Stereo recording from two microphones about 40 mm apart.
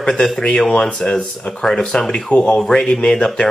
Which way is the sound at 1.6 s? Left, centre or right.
Centre.